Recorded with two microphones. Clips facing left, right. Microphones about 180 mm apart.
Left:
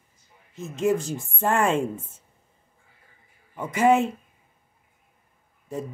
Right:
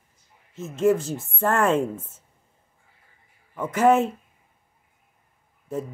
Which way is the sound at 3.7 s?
10° left (ahead or behind).